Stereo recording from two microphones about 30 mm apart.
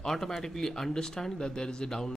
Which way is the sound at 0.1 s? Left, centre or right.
Centre.